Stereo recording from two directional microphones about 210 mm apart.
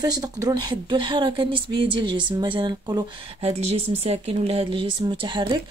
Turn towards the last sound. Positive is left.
turn(degrees=-20)  # may be behind; listen again after turning